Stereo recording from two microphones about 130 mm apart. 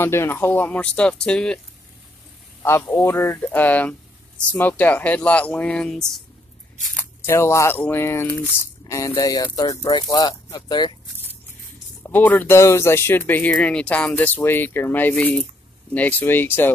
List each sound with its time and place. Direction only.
0.0 s speech: 20° left (ahead or behind)
2.6 s speech: 15° left (ahead or behind)
7.2 s speech: 20° left (ahead or behind)
12.0 s speech: 15° left (ahead or behind)